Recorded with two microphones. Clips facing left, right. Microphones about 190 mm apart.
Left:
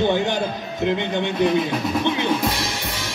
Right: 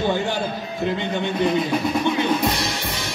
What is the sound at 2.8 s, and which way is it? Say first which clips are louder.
Music: right 1 dB; 15° right (ahead or behind).